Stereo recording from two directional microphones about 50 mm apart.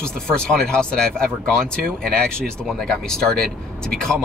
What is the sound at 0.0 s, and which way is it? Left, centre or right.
Speech, centre.